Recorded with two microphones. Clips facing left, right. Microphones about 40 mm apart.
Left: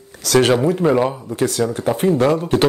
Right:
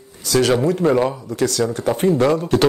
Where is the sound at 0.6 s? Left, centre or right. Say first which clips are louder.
Left 1 dB; left.